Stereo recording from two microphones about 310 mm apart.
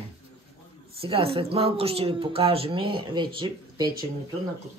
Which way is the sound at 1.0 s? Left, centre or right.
Centre.